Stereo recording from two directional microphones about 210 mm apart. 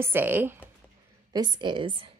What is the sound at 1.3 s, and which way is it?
Speech, 20° right (ahead or behind).